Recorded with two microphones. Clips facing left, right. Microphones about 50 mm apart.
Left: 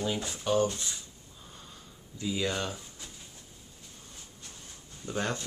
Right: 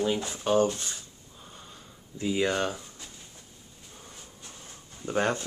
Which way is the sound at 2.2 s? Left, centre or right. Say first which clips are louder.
Right 5 dB; right.